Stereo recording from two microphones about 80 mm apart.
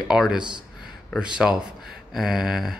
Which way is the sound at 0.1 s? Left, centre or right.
Centre.